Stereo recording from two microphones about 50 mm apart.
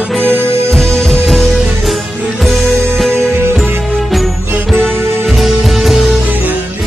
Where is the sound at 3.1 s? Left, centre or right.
Right.